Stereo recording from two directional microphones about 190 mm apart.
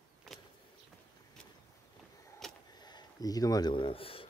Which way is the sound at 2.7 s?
20° left (ahead or behind).